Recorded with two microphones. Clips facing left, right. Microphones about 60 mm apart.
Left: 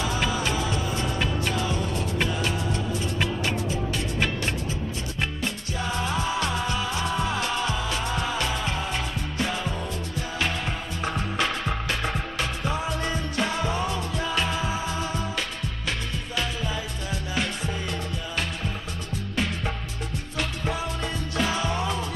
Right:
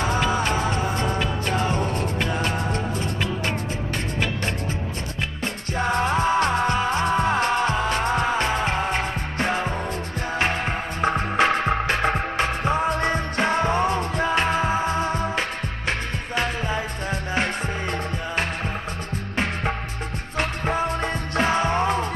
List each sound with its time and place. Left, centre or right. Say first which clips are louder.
0.0 s music: right 4 dB; right
5.4 s music: right 4 dB; right
19.3 s music: right 4 dB; right